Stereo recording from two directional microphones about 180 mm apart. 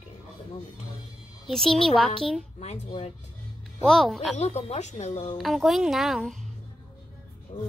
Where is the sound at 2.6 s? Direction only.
40° left (ahead or behind).